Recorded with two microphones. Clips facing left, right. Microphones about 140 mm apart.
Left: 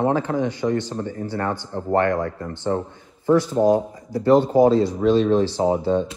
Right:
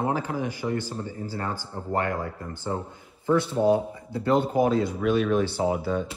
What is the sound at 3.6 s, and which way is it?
Speech, 35° left (ahead or behind).